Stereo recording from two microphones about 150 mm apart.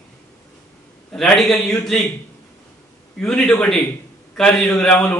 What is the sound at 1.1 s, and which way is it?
A man's voice, 5° left (ahead or behind).